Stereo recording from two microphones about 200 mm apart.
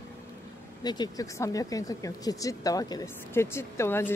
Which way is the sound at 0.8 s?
20° left (ahead or behind).